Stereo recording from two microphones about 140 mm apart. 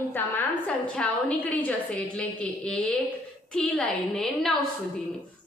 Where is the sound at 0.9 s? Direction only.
10° left (ahead or behind).